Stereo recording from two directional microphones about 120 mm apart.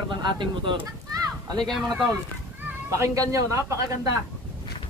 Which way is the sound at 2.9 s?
25° right (ahead or behind).